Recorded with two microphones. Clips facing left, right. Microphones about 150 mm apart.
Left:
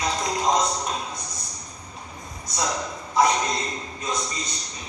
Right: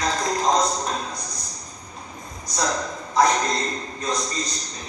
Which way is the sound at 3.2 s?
20° left (ahead or behind).